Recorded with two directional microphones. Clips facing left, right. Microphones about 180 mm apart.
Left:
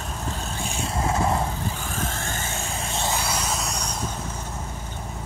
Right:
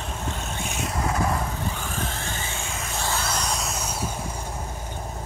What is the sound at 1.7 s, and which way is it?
Vehicle, 40° left (ahead or behind).